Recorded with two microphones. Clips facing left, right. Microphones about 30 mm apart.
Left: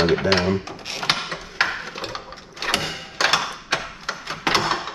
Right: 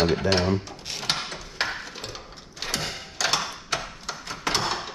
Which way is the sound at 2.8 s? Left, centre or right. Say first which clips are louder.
Left 6 dB; left.